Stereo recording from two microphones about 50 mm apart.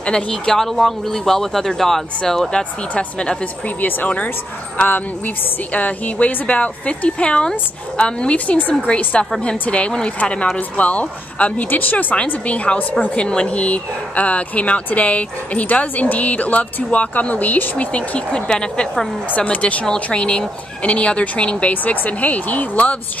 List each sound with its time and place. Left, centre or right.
0.0 s speech: centre
2.5 s speech: left
4.8 s speech: left; by 18.9 s centre
19.3 s speech: left